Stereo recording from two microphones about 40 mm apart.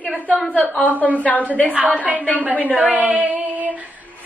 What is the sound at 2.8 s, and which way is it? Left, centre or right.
Female singing, right.